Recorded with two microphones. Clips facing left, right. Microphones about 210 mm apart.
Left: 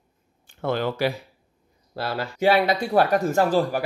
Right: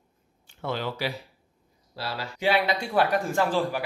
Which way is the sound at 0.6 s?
50° left (ahead or behind).